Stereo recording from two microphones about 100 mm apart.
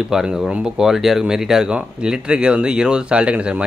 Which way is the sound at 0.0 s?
5° right (ahead or behind).